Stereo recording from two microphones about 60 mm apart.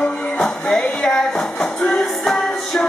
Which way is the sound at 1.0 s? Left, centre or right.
Centre.